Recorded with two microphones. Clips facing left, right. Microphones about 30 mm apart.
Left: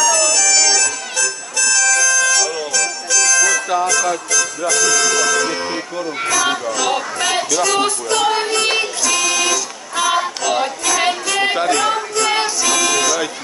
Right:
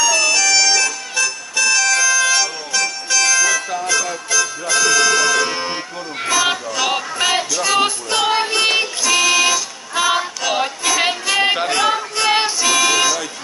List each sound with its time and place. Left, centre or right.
0.0 s music: right
4.3 s speech: right
6.2 s music: centre